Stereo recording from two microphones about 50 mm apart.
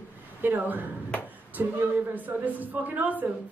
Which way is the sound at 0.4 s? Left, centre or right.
Right.